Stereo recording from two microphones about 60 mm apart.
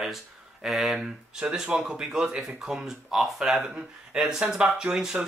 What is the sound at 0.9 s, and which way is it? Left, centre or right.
Speech, centre.